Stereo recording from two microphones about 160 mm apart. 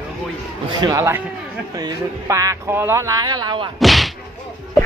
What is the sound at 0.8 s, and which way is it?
Speech, 20° right (ahead or behind).